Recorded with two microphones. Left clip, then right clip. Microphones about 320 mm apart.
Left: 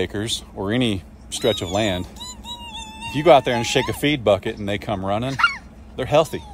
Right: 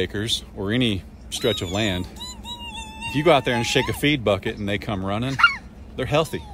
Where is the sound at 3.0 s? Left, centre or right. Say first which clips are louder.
Left 4 dB; centre.